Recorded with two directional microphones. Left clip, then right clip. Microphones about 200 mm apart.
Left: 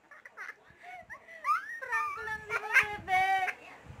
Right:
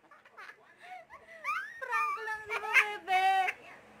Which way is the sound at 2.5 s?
10° right (ahead or behind).